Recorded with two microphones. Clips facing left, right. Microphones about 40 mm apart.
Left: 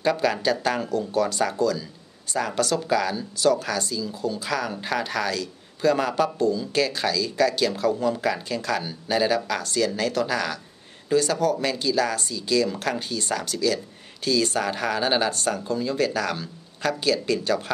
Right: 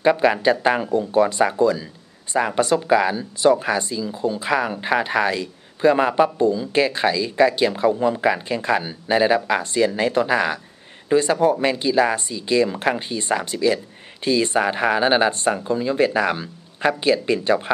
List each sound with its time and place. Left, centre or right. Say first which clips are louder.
0.0 s speech: right 6 dB; right